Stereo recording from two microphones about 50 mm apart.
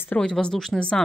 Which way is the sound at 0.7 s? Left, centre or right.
Centre.